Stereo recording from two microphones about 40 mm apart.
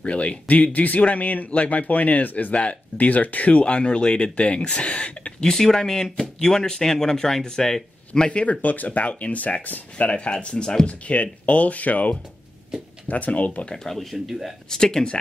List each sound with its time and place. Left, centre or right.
0.0 s speech: left
5.4 s speech: centre
8.3 s speech: left
10.9 s speech: left
14.1 s speech: centre
14.7 s speech: centre